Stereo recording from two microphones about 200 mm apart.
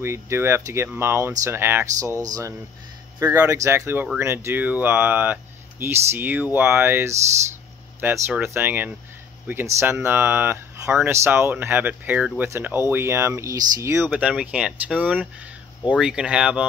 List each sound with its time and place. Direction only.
0.0 s speech: 15° right (ahead or behind)